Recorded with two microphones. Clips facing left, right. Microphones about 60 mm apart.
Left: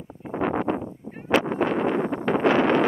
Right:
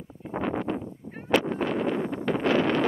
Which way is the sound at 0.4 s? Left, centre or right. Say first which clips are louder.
Left 4 dB; left.